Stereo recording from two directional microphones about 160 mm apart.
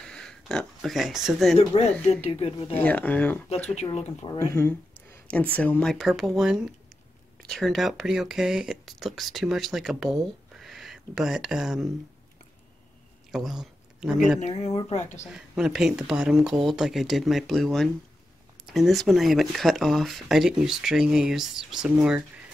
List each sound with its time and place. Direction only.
0.0 s speech: 5° left (ahead or behind)
1.7 s speech: 40° left (ahead or behind)
2.8 s speech: 10° left (ahead or behind)
3.9 s speech: 40° left (ahead or behind)
4.3 s speech: 15° left (ahead or behind); by 10.1 s centre (ahead or behind)
10.5 s a sound: centre (ahead or behind)
13.3 s speech: centre (ahead or behind)
14.4 s speech: 40° left (ahead or behind)
15.2 s speech: 5° right (ahead or behind)